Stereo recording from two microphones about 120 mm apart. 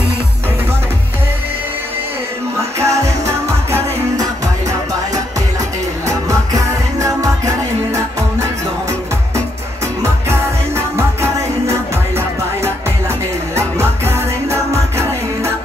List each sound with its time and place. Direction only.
2.8 s music: 25° right (ahead or behind)
6.0 s music: 25° right (ahead or behind)
10.0 s music: 20° right (ahead or behind)
13.6 s music: 20° right (ahead or behind)